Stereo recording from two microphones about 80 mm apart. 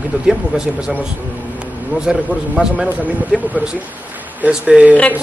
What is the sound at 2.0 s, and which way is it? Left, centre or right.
A man's voice, centre.